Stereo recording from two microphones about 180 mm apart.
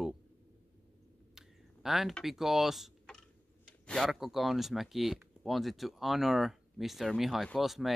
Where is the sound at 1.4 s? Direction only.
Centre (ahead or behind).